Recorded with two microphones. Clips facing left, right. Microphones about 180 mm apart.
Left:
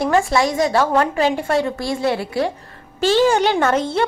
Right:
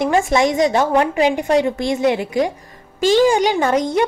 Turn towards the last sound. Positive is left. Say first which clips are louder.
# right 1 dB
turn(degrees=-15)  # may be behind; listen again after turning